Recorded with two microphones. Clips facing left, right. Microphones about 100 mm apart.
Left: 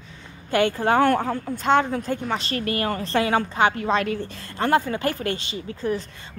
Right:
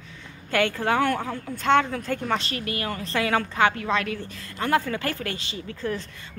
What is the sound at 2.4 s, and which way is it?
A woman's voice, 40° left (ahead or behind).